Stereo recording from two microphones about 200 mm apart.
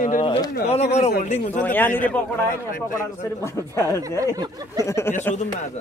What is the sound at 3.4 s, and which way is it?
Speech, 15° left (ahead or behind).